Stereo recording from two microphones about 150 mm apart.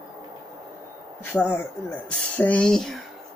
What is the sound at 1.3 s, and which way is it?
Speech, 15° left (ahead or behind).